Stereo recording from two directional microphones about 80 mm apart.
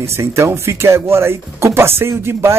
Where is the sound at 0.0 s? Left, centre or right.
Right.